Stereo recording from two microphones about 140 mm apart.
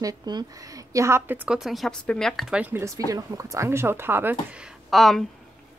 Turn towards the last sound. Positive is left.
turn(degrees=0)  # may be behind; listen again after turning